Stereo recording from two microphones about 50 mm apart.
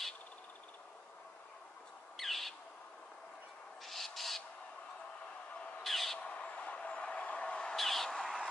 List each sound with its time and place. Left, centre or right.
2.1 s owl: centre
3.8 s owl: centre
5.9 s owl: centre
6.1 s vehicle: left
7.7 s bird: centre